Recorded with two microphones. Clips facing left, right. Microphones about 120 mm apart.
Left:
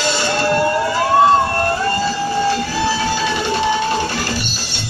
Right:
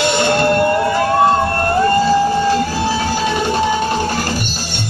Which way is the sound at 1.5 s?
50° right (ahead or behind).